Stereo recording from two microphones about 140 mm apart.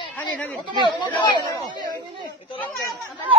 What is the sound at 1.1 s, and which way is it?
Speech, 30° left (ahead or behind).